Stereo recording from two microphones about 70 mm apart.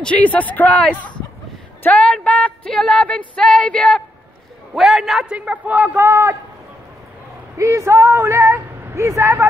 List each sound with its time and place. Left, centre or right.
0.0 s speech: centre
2.7 s female singing: centre
4.7 s a man's voice: centre
5.3 s a man's voice: centre
5.9 s a woman's voice: right
7.5 s a woman's voice: right